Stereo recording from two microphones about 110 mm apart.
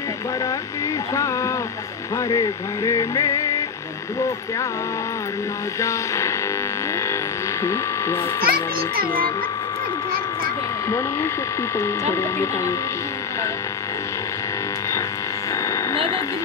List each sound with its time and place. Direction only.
1.1 s speech: 30° left (ahead or behind)
2.8 s music: 35° left (ahead or behind)
5.8 s speech: 30° left (ahead or behind)
7.6 s speech: 25° left (ahead or behind)
11.8 s speech: 25° left (ahead or behind)